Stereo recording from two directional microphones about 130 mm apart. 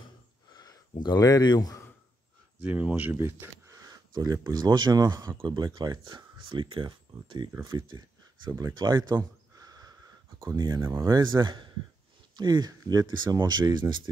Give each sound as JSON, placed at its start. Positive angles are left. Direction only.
{"t": 0.5, "sound": "gasp", "side_deg": 30}
{"t": 2.6, "sound": "speech", "side_deg": -15}
{"t": 3.7, "sound": "speech", "side_deg": -30}
{"t": 8.5, "sound": "speech", "side_deg": -20}
{"t": 8.7, "sound": "a sound", "side_deg": -35}
{"t": 10.4, "sound": "speech", "side_deg": -35}